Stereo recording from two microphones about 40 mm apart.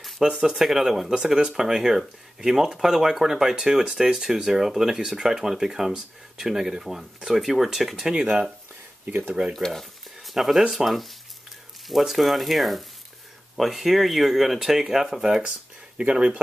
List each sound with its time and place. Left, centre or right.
0.2 s speech: centre
8.1 s speech: centre
9.7 s a sound: centre
10.7 s speech: centre
16.0 s speech: right